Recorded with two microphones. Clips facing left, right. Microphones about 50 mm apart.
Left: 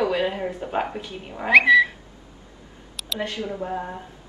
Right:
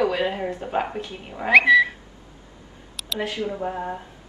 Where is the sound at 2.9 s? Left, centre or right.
Centre.